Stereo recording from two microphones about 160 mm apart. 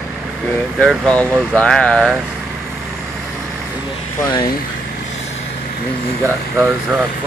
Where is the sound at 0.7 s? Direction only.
5° left (ahead or behind).